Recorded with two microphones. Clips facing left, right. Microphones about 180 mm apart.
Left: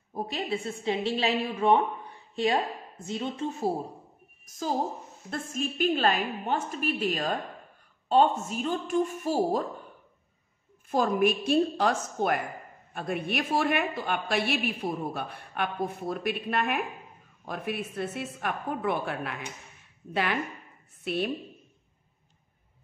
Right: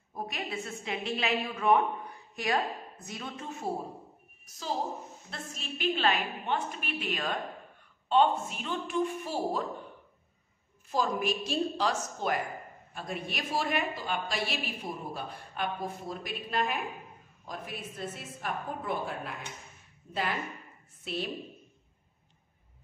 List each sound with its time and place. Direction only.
0.1 s a woman's voice: 30° left (ahead or behind)
4.5 s a woman's voice: 50° left (ahead or behind)
10.9 s a woman's voice: 55° left (ahead or behind); by 20.3 s 70° left (ahead or behind)
21.0 s a woman's voice: 60° left (ahead or behind)